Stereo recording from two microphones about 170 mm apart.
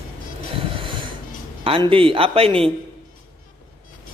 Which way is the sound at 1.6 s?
30° right (ahead or behind).